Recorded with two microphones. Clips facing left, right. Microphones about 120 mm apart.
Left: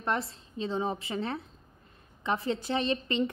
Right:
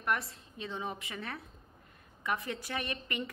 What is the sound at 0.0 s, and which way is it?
A woman's voice, 30° left (ahead or behind).